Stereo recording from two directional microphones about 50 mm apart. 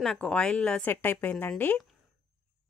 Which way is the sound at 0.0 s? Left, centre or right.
Centre.